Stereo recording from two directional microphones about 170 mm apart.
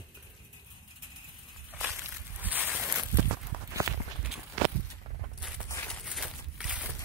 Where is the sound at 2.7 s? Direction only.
10° right (ahead or behind).